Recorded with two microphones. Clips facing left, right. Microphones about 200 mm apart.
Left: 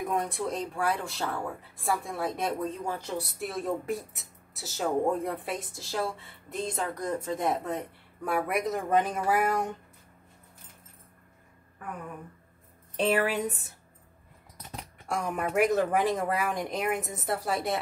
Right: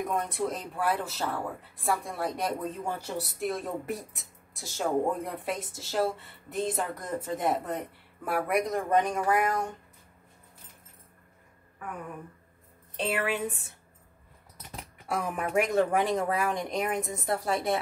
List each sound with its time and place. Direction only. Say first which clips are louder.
0.0 s speech: even; centre (ahead or behind)
12.9 s a woman's voice: left 4 dB; 40° left (ahead or behind)
15.0 s speech: even; 5° right (ahead or behind)